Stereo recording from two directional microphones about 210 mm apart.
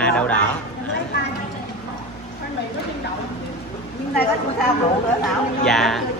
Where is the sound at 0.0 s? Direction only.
5° left (ahead or behind).